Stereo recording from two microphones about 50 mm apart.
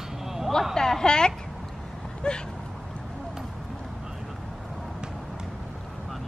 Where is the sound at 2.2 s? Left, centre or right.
Centre.